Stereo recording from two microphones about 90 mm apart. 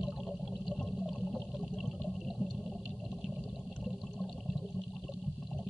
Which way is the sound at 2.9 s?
5° left (ahead or behind).